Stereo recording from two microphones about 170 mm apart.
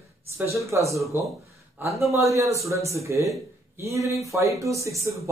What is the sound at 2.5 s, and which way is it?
Speech, 15° right (ahead or behind).